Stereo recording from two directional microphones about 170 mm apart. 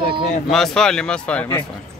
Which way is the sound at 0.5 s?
Centre (ahead or behind).